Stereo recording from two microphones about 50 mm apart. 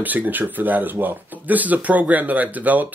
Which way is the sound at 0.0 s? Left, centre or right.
Right.